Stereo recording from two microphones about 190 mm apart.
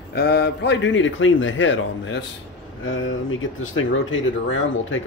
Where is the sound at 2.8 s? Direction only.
90° left.